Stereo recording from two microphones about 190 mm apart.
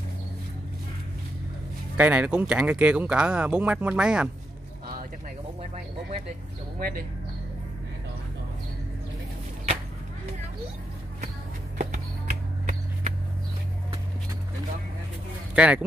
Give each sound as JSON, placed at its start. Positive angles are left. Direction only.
{"t": 2.0, "sound": "speech", "side_deg": -10}
{"t": 6.8, "sound": "speech", "side_deg": -50}
{"t": 11.8, "sound": "a sound", "side_deg": -50}
{"t": 15.5, "sound": "speech", "side_deg": -5}